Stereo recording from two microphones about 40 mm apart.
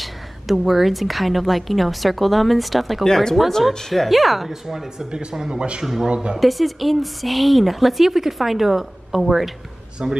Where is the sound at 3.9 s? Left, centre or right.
Centre; by 6.4 s right.